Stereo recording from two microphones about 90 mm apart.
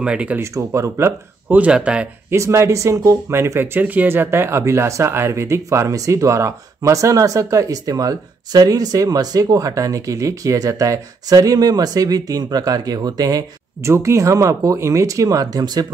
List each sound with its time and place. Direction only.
0.0 s speech: 10° right (ahead or behind)
0.4 s speech: 35° right (ahead or behind)
1.5 s speech: 15° right (ahead or behind)
2.3 s speech: 30° right (ahead or behind); by 15.9 s 45° right (ahead or behind)